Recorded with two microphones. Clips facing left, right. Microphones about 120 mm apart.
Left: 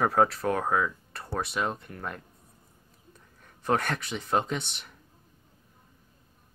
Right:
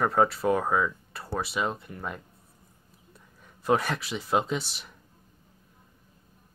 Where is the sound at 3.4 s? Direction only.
5° right (ahead or behind).